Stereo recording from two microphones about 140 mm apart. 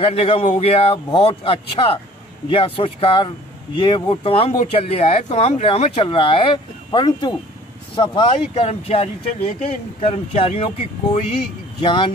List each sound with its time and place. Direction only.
0.0 s speech: 45° left (ahead or behind)
11.8 s speech: 35° left (ahead or behind)